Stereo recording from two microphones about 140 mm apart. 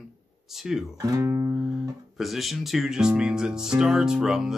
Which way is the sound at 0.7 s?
Centre (ahead or behind).